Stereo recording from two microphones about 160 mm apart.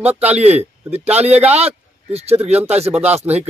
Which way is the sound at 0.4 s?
40° right (ahead or behind).